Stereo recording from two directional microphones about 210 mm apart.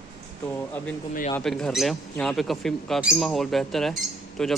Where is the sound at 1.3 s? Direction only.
Centre (ahead or behind).